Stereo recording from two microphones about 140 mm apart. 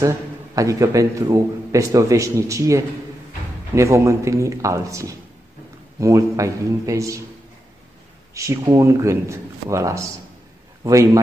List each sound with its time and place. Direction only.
0.6 s a man's voice: 25° right (ahead or behind)
8.4 s a man's voice: 20° right (ahead or behind)